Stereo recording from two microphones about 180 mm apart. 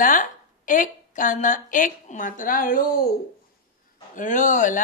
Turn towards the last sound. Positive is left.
turn(degrees=45)  # may be behind; listen again after turning